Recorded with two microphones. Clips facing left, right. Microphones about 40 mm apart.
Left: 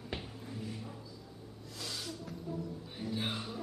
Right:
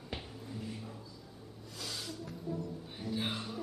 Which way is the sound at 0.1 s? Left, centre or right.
Centre.